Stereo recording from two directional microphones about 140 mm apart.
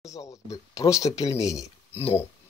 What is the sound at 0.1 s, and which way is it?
Speech, 25° left (ahead or behind).